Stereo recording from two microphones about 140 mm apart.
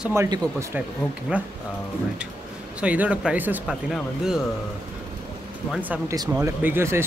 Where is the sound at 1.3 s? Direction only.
10° right (ahead or behind).